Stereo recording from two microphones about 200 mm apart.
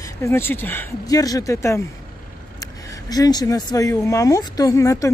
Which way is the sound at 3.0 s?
20° left (ahead or behind).